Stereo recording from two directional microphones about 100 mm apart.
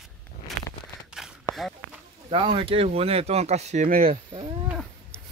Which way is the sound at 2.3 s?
65° right (ahead or behind).